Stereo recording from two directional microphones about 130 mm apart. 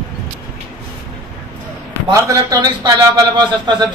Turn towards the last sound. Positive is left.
turn(degrees=-35)  # may be behind; listen again after turning